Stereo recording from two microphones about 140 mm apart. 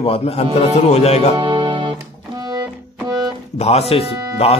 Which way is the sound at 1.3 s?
35° right (ahead or behind).